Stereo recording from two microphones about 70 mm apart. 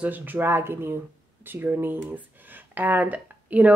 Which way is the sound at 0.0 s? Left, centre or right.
Right.